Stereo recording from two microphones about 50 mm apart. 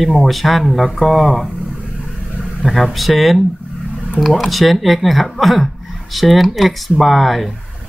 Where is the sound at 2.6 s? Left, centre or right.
Centre.